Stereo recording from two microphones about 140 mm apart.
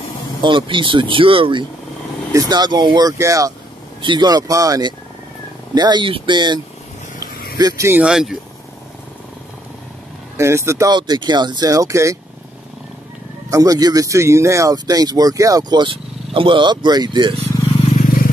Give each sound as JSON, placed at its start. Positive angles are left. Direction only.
{"t": 0.4, "sound": "speech", "side_deg": -35}
{"t": 8.0, "sound": "speech", "side_deg": -5}
{"t": 10.3, "sound": "speech", "side_deg": -20}
{"t": 10.9, "sound": "speech", "side_deg": -30}
{"t": 13.5, "sound": "speech", "side_deg": -25}